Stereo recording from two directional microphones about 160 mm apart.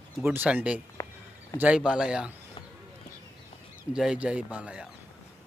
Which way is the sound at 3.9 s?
5° right (ahead or behind).